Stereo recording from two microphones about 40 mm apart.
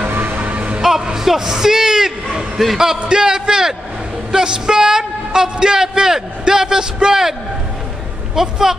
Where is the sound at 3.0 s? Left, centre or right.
Centre.